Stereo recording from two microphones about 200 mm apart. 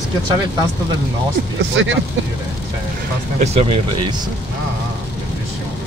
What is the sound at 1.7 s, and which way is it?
Speech, 70° right (ahead or behind).